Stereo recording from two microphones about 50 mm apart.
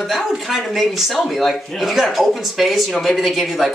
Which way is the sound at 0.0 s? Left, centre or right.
Centre.